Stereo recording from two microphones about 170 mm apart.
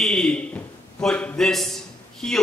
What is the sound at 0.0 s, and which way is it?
A man's voice, 5° left (ahead or behind).